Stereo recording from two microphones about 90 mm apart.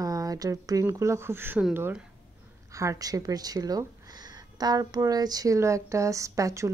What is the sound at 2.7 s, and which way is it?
Speech, 40° right (ahead or behind).